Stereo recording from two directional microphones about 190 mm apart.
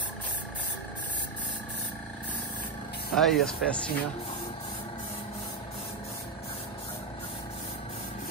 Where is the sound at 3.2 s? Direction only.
Centre (ahead or behind).